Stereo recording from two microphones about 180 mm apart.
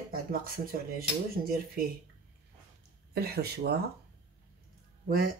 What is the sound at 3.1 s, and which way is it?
Speech, 60° right (ahead or behind).